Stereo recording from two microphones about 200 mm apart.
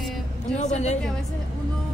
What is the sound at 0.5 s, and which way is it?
Speech, 35° left (ahead or behind).